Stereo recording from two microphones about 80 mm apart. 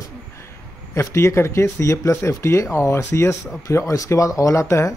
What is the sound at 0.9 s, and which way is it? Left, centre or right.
Speech, left.